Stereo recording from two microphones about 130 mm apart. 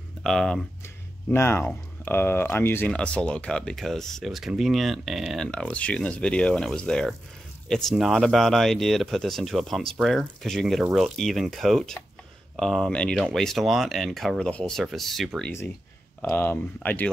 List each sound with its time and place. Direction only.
0.2 s speech: 5° left (ahead or behind)
0.8 s speech: 20° left (ahead or behind); by 15.5 s 5° left (ahead or behind)
16.2 s speech: 15° left (ahead or behind)